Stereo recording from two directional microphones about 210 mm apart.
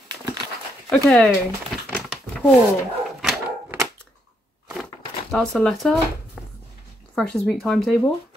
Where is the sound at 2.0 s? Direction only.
Centre (ahead or behind).